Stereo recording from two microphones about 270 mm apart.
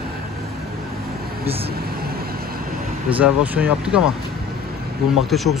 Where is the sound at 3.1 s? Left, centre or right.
Centre.